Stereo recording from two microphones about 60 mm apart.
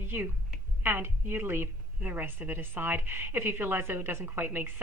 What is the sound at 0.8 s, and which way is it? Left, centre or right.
A woman's voice, right.